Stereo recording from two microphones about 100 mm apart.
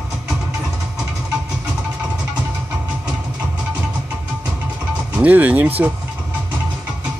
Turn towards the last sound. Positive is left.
turn(degrees=-15)  # may be behind; listen again after turning